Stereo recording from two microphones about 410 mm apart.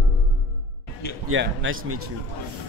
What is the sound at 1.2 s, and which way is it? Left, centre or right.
Speech, right.